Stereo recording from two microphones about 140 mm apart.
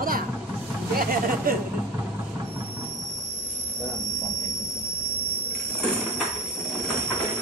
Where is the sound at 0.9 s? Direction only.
90° right.